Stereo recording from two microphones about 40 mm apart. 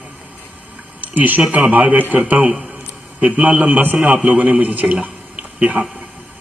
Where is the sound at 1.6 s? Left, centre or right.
Right.